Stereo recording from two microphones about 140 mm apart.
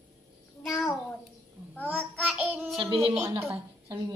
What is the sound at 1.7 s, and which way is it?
Child singing, 10° left (ahead or behind).